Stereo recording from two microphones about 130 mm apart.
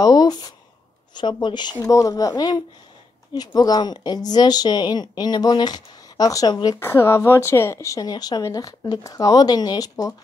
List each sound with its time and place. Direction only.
0.0 s a sound: 30° left (ahead or behind)
1.1 s speech: 35° left (ahead or behind)
6.8 s a woman's voice: 20° left (ahead or behind)